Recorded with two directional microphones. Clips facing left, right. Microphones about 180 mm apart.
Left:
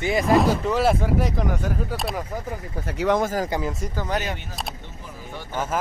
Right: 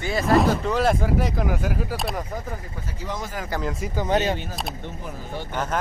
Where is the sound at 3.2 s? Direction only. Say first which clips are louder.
Left 8 dB; 40° left (ahead or behind).